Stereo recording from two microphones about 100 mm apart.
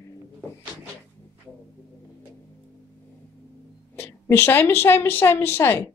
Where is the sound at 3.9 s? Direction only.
25° left (ahead or behind).